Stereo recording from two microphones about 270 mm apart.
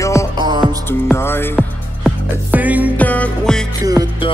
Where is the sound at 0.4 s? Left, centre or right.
Centre.